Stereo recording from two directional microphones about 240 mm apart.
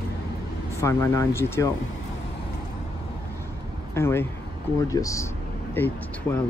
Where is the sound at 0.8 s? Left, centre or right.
Centre.